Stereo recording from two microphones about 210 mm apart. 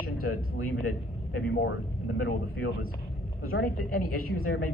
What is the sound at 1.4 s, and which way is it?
Speech, 50° left (ahead or behind).